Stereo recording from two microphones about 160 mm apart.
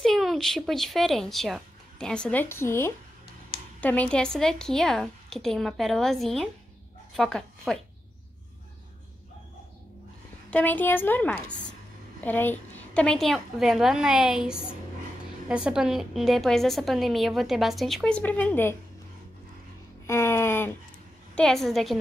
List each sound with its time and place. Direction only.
0.0 s a woman's voice: centre (ahead or behind)
10.5 s a woman's voice: 10° left (ahead or behind)
20.1 s a woman's voice: 15° left (ahead or behind)
21.4 s a woman's voice: centre (ahead or behind)